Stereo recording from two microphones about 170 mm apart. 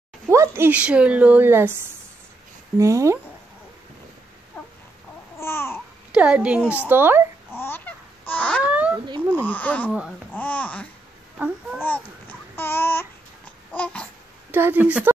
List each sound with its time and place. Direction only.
0.3 s a woman's voice: 15° right (ahead or behind)
2.8 s a woman's voice: 15° right (ahead or behind)
5.4 s babbling: 15° left (ahead or behind)
6.1 s a woman's voice: 5° right (ahead or behind)
7.5 s babbling: 15° left (ahead or behind)
8.6 s a sound: 10° right (ahead or behind)
9.4 s speech: 10° left (ahead or behind)
9.8 s speech: 5° right (ahead or behind)
10.3 s babbling: 10° left (ahead or behind)
11.3 s babbling: 10° right (ahead or behind)
12.5 s child singing: 15° left (ahead or behind)
13.7 s babbling: 5° left (ahead or behind)
14.5 s a woman's voice: 10° right (ahead or behind)